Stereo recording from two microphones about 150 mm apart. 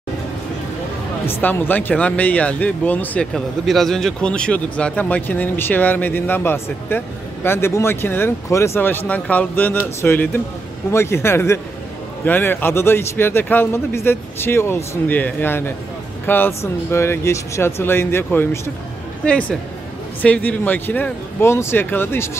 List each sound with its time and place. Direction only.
1.2 s speech: 15° left (ahead or behind)
20.2 s speech: 10° left (ahead or behind)